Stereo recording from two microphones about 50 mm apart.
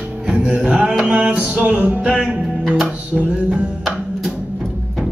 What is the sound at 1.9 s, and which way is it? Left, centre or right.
Music, centre.